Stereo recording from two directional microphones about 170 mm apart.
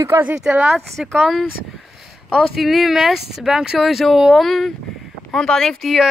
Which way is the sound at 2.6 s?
Centre (ahead or behind).